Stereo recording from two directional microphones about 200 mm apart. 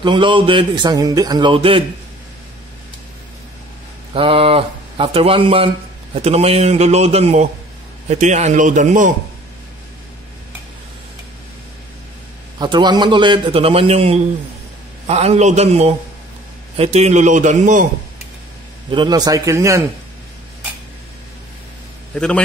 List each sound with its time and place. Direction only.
0.0 s speech: 25° right (ahead or behind)
4.1 s a man's voice: 25° right (ahead or behind)
12.5 s a man's voice: 20° right (ahead or behind); by 17.8 s 40° right (ahead or behind)
18.9 s a man's voice: 20° right (ahead or behind)
22.1 s a man's voice: 5° left (ahead or behind)